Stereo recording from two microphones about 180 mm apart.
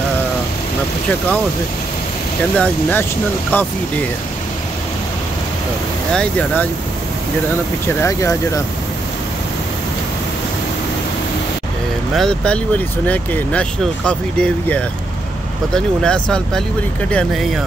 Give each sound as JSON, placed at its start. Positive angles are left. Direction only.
{"t": 2.5, "sound": "speech", "side_deg": 10}
{"t": 6.1, "sound": "speech", "side_deg": 10}
{"t": 8.0, "sound": "speech", "side_deg": 15}
{"t": 12.2, "sound": "speech", "side_deg": 5}